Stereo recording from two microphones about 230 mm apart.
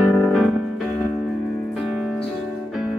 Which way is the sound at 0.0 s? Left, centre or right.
Centre.